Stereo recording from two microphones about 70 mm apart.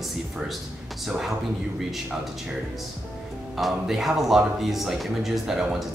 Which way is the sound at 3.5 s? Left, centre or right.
Centre.